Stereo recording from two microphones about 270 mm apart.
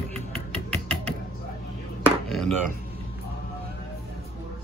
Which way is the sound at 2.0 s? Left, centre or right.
Centre.